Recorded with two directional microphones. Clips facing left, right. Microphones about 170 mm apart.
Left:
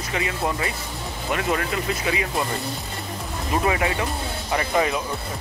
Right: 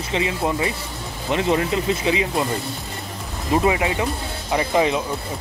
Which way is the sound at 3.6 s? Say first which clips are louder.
Right 3 dB; 20° right (ahead or behind).